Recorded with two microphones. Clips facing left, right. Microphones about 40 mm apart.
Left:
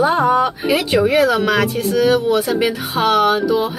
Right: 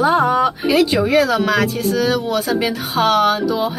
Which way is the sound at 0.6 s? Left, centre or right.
Centre.